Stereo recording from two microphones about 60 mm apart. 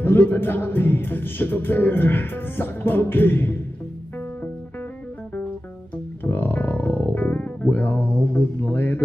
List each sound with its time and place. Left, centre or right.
0.2 s music: left
6.2 s music: left